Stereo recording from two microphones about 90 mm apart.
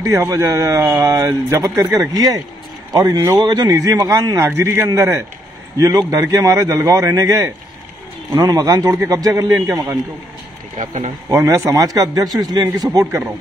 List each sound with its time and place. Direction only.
0.3 s a man's voice: 40° right (ahead or behind)
1.1 s speech: 30° right (ahead or behind)
1.6 s a man's voice: 40° right (ahead or behind)
11.2 s a man's voice: 40° right (ahead or behind)